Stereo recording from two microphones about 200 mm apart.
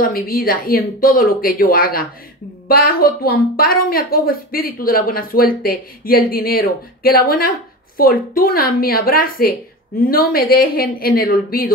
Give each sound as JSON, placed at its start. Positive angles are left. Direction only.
{"t": 0.0, "sound": "a woman's voice", "side_deg": 45}